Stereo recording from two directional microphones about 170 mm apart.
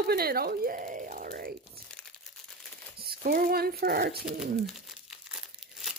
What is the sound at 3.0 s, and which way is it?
Speech, 65° right (ahead or behind).